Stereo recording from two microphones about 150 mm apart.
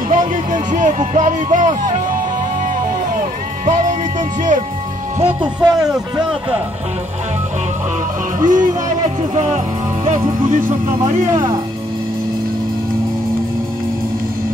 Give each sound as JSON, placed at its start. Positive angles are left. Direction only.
{"t": 0.1, "sound": "speech", "side_deg": -60}
{"t": 3.2, "sound": "music", "side_deg": -55}
{"t": 5.4, "sound": "speech", "side_deg": -25}
{"t": 8.4, "sound": "speech", "side_deg": -60}
{"t": 11.3, "sound": "speech", "side_deg": -30}